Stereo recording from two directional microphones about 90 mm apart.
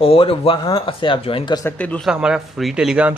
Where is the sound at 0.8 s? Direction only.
75° left (ahead or behind).